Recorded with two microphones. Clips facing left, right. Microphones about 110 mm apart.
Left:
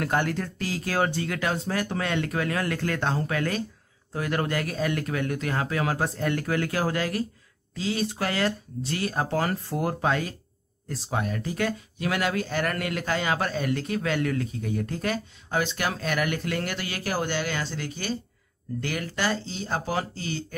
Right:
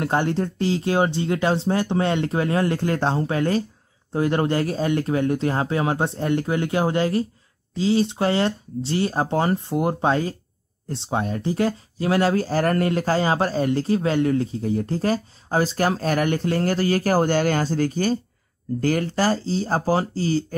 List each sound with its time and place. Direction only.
0.0 s speech: 25° right (ahead or behind)